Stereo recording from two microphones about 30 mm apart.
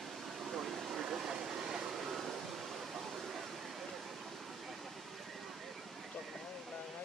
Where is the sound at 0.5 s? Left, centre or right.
Centre.